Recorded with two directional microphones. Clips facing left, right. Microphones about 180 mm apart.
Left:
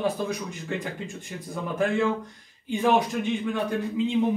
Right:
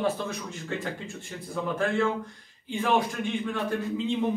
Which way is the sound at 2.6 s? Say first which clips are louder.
Left 3 dB; 15° left (ahead or behind).